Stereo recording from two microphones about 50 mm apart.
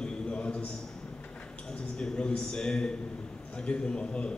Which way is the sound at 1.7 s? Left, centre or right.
Centre.